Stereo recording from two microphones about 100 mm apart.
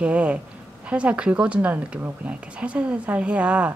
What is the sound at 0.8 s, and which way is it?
Speech, 10° right (ahead or behind).